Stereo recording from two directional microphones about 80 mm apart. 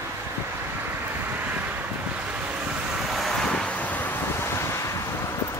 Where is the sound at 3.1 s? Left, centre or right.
Centre; by 5.4 s left.